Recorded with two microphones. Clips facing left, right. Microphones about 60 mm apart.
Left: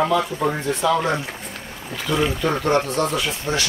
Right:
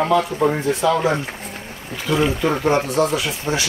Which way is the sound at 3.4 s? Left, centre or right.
Centre.